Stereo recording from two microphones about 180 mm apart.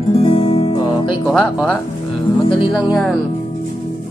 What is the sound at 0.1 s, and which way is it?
Music, 35° left (ahead or behind).